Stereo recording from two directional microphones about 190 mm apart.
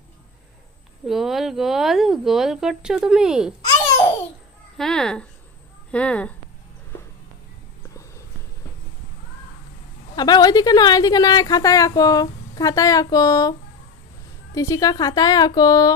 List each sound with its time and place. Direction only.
1.0 s speech: centre (ahead or behind)
4.7 s speech: 5° left (ahead or behind)
10.1 s a woman's voice: 20° left (ahead or behind)